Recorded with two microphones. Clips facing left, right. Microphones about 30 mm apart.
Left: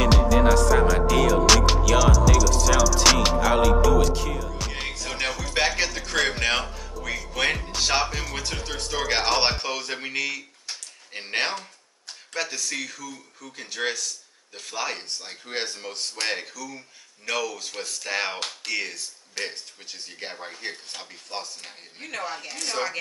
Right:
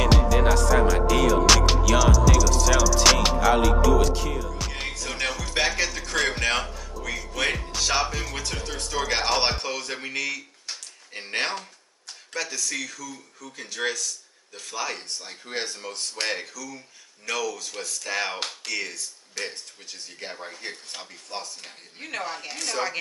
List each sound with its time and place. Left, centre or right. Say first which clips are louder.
0.0 s music: left 2 dB; centre
6.7 s speech: left 1 dB; centre
22.0 s speech: even; centre